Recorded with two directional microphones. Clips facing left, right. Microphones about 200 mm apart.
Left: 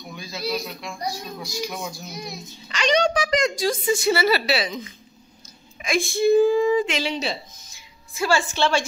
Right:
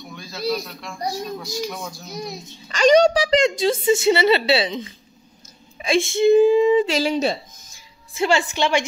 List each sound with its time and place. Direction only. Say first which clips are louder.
0.1 s a man's voice: right 3 dB; 5° left (ahead or behind)
2.1 s a child's voice: right 4 dB; 40° right (ahead or behind); by 6.9 s 20° right (ahead or behind)
6.9 s speech: right 6 dB; 45° right (ahead or behind)
8.1 s a child's voice: right 2 dB; 20° right (ahead or behind)